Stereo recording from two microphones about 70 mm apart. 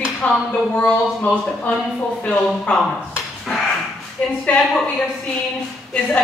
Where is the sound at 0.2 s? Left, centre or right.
Centre.